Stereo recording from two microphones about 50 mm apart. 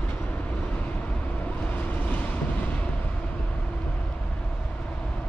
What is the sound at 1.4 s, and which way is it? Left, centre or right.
Vehicle, left.